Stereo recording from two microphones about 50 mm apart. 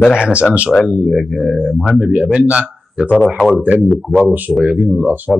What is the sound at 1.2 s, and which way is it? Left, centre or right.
Speech, centre.